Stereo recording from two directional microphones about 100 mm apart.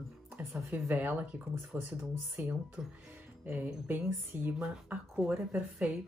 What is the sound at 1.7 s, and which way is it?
Speech, 30° right (ahead or behind).